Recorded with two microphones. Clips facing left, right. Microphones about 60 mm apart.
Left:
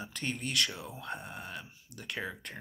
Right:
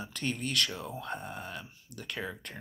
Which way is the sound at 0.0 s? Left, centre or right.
Left.